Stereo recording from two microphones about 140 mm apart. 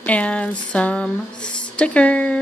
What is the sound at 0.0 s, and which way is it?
Speech, 10° left (ahead or behind).